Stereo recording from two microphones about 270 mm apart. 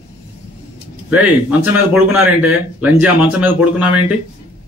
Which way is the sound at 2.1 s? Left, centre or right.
Centre.